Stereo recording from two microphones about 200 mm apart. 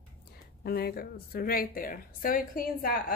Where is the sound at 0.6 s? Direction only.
50° left (ahead or behind).